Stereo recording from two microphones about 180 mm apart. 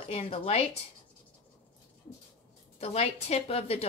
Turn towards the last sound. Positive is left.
turn(degrees=35)  # may be behind; listen again after turning